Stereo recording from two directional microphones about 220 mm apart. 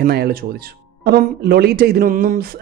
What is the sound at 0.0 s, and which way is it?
Speech, 45° right (ahead or behind).